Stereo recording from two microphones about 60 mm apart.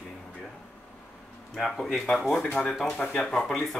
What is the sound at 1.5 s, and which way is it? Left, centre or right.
Speech, centre.